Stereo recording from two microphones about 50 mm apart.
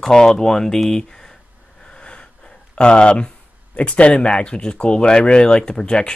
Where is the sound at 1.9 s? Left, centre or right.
Centre.